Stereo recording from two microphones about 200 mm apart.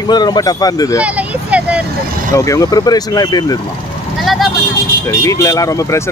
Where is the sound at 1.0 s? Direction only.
5° right (ahead or behind).